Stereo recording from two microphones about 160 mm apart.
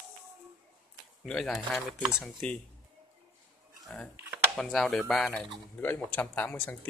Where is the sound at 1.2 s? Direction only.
Centre (ahead or behind).